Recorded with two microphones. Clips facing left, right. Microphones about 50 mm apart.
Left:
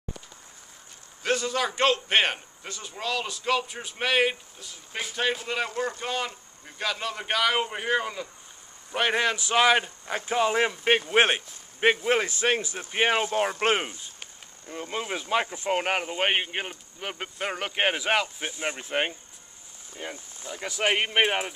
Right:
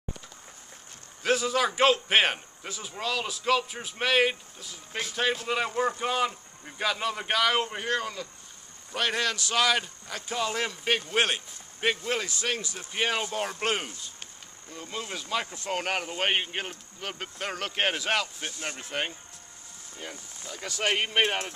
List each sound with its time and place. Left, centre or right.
1.2 s a man's voice: centre